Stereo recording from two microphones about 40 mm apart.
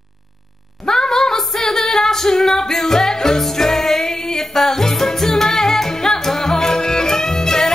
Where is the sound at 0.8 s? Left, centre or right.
Centre.